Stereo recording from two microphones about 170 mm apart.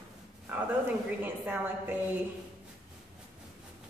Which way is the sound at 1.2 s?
10° right (ahead or behind).